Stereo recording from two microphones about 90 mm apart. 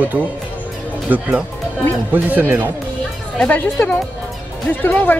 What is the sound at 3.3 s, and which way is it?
A woman's voice, 15° left (ahead or behind).